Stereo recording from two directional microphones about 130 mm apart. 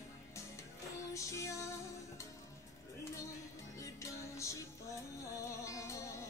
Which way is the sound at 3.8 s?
25° left (ahead or behind).